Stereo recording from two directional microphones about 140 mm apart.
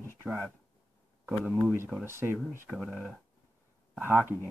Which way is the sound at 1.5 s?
20° right (ahead or behind).